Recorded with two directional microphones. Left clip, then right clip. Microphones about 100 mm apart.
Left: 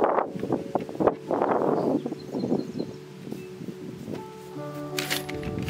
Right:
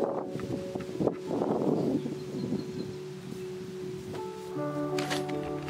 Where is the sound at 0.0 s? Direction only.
45° left (ahead or behind).